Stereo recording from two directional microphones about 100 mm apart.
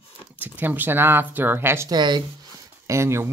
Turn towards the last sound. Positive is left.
turn(degrees=-30)  # may be behind; listen again after turning